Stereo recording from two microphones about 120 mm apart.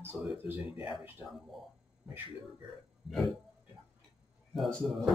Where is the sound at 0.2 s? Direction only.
5° right (ahead or behind).